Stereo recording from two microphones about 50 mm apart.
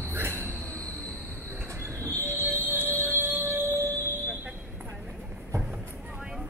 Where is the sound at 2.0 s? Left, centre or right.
Right.